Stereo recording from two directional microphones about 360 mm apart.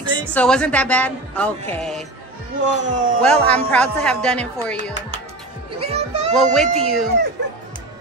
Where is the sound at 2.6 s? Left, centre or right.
Centre.